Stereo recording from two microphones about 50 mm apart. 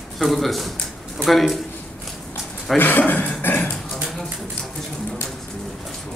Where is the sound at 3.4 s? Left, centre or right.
Left.